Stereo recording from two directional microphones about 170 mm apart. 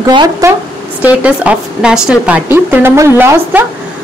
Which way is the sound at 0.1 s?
25° right (ahead or behind).